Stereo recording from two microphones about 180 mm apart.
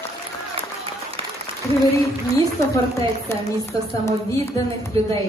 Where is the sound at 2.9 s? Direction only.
15° left (ahead or behind).